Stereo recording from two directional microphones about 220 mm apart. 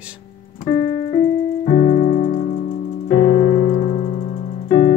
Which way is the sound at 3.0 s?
25° left (ahead or behind).